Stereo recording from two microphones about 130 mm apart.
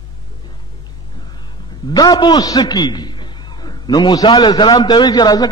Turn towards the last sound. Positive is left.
turn(degrees=30)  # may be behind; listen again after turning